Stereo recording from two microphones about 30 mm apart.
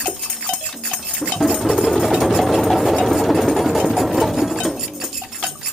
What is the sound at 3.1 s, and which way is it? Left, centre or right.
Sewing machine, centre.